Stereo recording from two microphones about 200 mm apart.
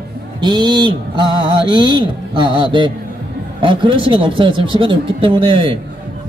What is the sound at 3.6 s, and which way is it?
Speech, 25° right (ahead or behind).